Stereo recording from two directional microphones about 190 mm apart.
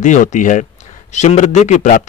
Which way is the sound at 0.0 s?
40° left (ahead or behind).